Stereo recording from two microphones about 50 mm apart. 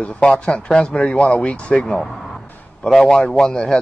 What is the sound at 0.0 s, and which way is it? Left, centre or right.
Speech, left.